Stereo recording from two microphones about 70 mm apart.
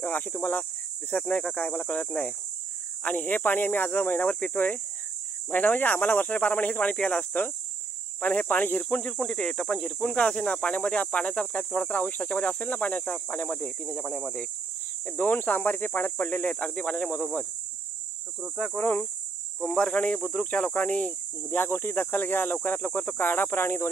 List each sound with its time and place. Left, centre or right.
0.0 s speech: left
9.1 s speech: centre
15.0 s speech: left
18.8 s speech: left